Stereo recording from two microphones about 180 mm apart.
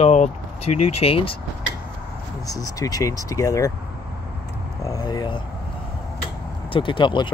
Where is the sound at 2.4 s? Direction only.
20° left (ahead or behind).